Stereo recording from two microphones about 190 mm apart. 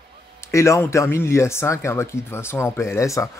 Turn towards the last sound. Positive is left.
turn(degrees=15)  # may be behind; listen again after turning